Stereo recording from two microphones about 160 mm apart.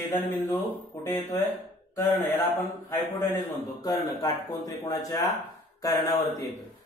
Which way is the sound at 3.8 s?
25° left (ahead or behind).